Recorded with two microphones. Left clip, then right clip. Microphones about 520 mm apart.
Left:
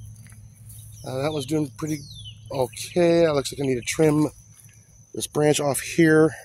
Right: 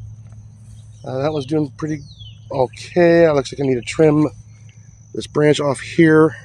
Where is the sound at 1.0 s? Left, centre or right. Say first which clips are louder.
Right 6 dB; left.